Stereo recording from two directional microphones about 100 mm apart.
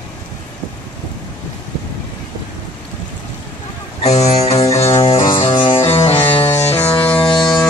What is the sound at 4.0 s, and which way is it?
Music, 90° left.